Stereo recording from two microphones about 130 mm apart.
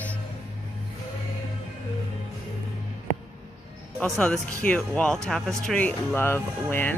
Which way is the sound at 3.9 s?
10° left (ahead or behind).